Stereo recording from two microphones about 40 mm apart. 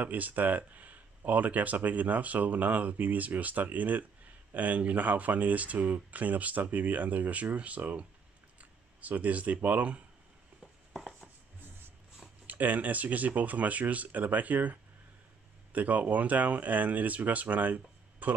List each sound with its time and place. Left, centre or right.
0.0 s speech: right
10.9 s writing: centre
12.4 s speech: right